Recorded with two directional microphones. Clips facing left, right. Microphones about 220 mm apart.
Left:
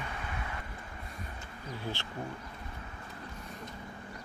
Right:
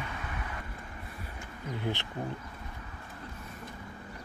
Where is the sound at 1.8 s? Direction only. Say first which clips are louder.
Right 5 dB; 20° right (ahead or behind).